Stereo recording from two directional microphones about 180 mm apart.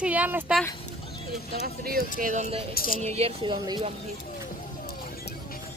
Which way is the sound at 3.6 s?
25° right (ahead or behind).